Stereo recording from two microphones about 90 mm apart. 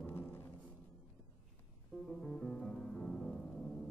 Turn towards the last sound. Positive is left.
turn(degrees=10)  # may be behind; listen again after turning